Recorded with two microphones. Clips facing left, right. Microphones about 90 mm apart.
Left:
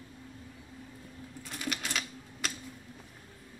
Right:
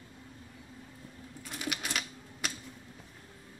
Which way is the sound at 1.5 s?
5° right (ahead or behind).